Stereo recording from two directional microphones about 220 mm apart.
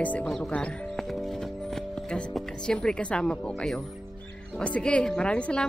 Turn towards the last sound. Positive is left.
turn(degrees=5)  # may be behind; listen again after turning